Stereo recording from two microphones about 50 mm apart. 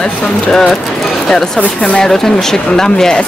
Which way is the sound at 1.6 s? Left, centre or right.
Left.